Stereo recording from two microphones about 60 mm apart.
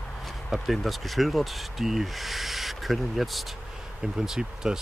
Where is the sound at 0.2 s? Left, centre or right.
Centre.